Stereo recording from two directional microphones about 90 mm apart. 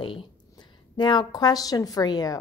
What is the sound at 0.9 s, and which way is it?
Speech, 55° left (ahead or behind).